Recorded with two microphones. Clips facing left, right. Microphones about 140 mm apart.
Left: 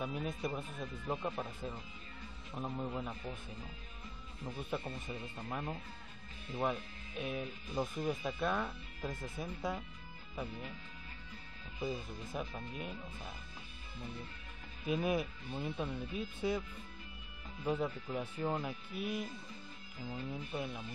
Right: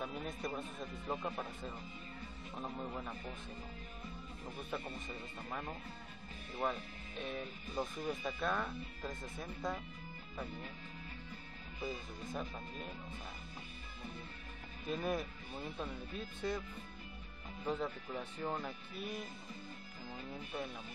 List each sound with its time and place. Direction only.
0.0 s speech: 5° left (ahead or behind)
4.6 s speech: 5° left (ahead or behind)
11.8 s speech: 5° left (ahead or behind)
14.9 s speech: 5° left (ahead or behind)
17.6 s speech: 5° left (ahead or behind)